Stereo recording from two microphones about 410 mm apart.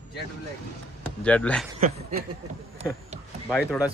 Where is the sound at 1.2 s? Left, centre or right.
Centre.